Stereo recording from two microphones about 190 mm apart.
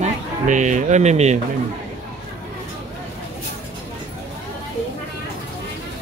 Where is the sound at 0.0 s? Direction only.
40° right (ahead or behind).